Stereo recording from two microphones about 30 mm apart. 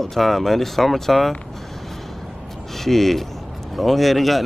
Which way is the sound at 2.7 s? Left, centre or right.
Centre.